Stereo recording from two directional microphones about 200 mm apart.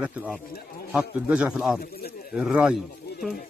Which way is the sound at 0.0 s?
5° right (ahead or behind).